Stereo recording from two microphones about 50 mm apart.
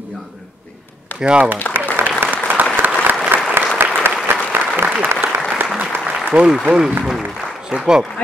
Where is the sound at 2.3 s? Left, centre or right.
Right.